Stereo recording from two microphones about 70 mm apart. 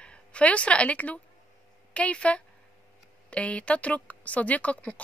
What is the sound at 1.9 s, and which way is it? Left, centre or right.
A woman's voice, centre.